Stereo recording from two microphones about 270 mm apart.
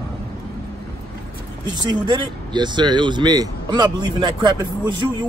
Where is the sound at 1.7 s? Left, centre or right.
Centre.